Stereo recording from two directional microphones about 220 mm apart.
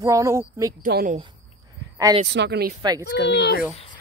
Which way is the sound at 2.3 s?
50° right (ahead or behind).